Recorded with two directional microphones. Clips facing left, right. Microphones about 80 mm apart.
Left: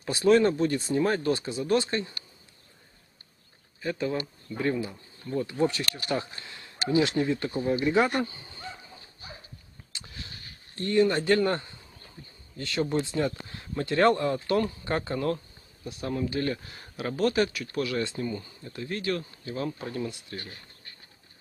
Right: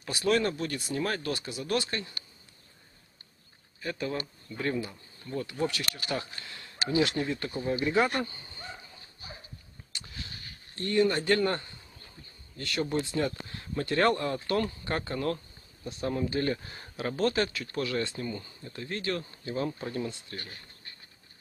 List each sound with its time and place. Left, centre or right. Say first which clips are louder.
0.3 s speech: left 6 dB; centre
3.8 s speech: left 4 dB; centre
10.8 s speech: left 3 dB; centre
15.1 s insect: left 2 dB; centre
16.3 s speech: even; centre
19.1 s speech: even; centre
20.1 s speech: left 2 dB; centre